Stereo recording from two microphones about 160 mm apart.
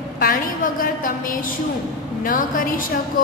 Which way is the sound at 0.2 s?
60° left (ahead or behind).